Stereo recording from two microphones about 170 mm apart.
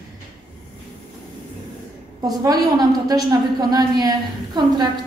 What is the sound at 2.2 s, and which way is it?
A woman's voice, 20° right (ahead or behind).